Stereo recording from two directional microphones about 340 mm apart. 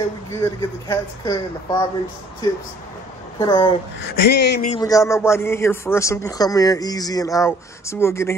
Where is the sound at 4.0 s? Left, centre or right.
Left.